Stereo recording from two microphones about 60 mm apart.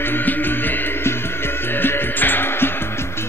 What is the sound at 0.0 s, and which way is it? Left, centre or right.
Music, left.